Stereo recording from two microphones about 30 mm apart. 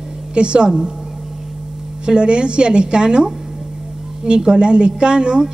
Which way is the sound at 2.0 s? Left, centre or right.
Right.